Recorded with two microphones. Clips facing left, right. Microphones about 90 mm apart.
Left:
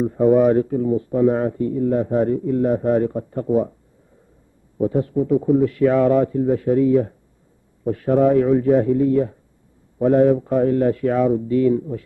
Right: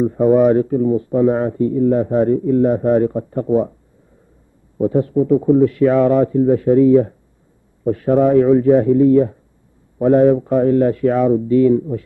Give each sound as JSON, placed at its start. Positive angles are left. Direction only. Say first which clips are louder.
{"t": 0.0, "sound": "speech", "louder": "right 2 dB", "side_deg": -45}
{"t": 4.7, "sound": "speech", "louder": "right 4 dB", "side_deg": -35}